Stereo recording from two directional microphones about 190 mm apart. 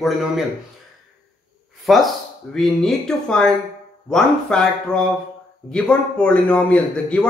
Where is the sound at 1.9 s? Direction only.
Centre (ahead or behind).